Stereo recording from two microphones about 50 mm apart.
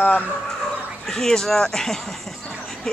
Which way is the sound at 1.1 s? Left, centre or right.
Centre.